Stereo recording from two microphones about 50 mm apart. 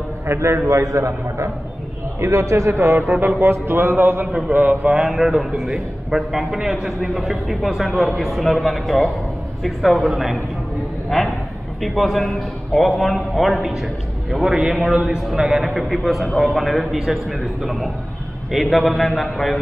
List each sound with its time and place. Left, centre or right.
0.3 s a man's voice: right
3.1 s speech: right
3.3 s speech: right
4.8 s speech: right
5.1 s a man's voice: centre